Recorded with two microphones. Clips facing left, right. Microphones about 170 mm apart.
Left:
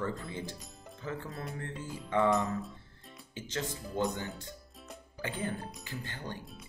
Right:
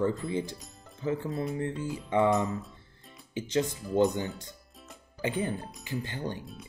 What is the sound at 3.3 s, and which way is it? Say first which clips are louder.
Speech: right 9 dB; 15° right (ahead or behind).